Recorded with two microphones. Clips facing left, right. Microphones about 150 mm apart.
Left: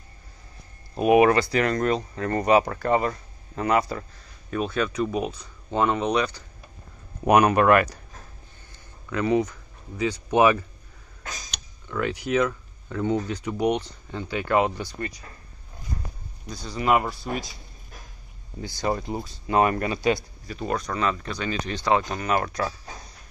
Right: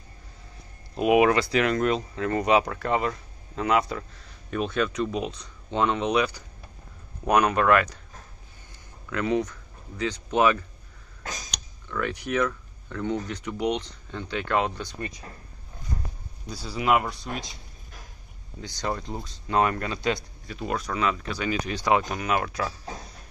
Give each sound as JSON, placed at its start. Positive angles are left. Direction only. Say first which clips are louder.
{"t": 0.9, "sound": "speech", "louder": "left 2 dB", "side_deg": 0}
{"t": 7.2, "sound": "speech", "louder": "left 3 dB", "side_deg": 10}
{"t": 9.1, "sound": "speech", "louder": "left 3 dB", "side_deg": 5}
{"t": 11.9, "sound": "speech", "louder": "left 3 dB", "side_deg": 15}
{"t": 15.0, "sound": "speech", "louder": "left 2 dB", "side_deg": -20}
{"t": 16.4, "sound": "speech", "louder": "left 1 dB", "side_deg": -10}
{"t": 18.6, "sound": "speech", "louder": "left 4 dB", "side_deg": 10}
{"t": 20.4, "sound": "speech", "louder": "left 2 dB", "side_deg": 0}